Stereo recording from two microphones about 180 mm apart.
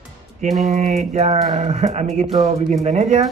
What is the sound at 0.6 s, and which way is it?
Speech, 40° right (ahead or behind).